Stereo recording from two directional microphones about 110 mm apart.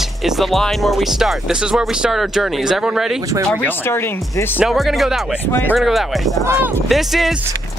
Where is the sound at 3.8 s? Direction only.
20° left (ahead or behind).